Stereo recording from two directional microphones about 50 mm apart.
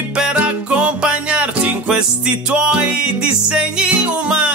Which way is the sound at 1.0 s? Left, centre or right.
Right.